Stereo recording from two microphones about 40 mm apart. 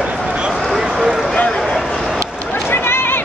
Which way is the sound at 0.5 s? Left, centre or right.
Centre.